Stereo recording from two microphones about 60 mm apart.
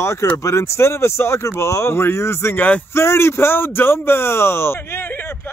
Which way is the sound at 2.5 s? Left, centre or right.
Left.